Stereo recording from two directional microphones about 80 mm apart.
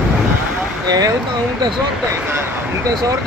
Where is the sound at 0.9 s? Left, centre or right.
Right.